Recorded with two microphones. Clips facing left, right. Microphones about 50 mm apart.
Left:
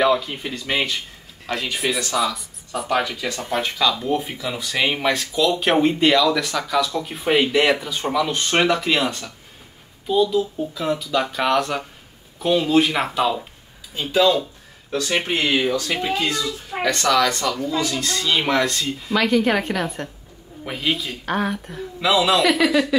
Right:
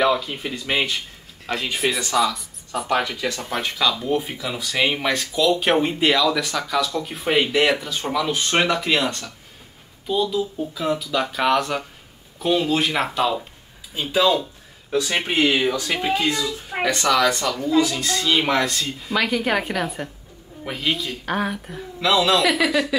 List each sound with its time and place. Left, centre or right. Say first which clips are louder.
0.0 s speech: left 1 dB; centre
13.9 s speech: left 1 dB; centre
15.1 s speech: left 1 dB; right
15.4 s speech: right 3 dB; centre
16.0 s speech: right 1 dB; right
16.8 s speech: even; centre